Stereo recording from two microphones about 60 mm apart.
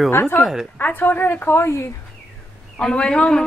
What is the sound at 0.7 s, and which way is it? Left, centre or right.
Speech, left.